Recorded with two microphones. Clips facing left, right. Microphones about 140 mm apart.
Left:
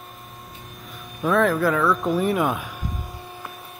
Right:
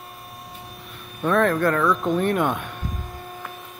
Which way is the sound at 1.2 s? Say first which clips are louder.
Even; centre (ahead or behind).